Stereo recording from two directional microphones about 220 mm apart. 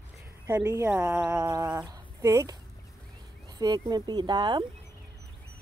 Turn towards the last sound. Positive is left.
turn(degrees=-20)  # may be behind; listen again after turning